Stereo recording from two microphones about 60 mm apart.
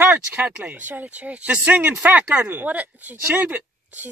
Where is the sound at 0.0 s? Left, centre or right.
Right.